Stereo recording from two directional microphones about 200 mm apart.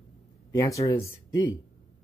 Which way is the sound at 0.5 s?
15° left (ahead or behind).